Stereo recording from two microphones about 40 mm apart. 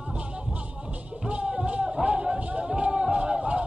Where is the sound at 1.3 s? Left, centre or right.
Right.